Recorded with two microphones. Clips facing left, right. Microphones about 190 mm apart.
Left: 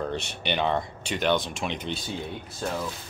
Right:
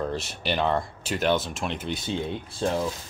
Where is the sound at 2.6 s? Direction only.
25° right (ahead or behind).